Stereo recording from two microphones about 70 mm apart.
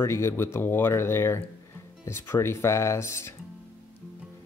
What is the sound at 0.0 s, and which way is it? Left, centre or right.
Speech, left.